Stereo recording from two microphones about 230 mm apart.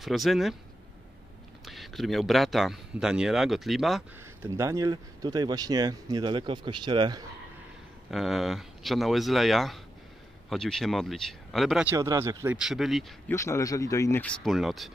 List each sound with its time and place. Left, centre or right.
0.0 s speech: centre
1.6 s speech: centre
4.5 s speech: centre
8.1 s speech: centre
12.5 s speech: centre
13.3 s speech: centre